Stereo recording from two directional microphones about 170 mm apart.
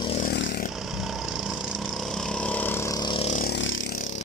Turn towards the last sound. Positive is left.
turn(degrees=85)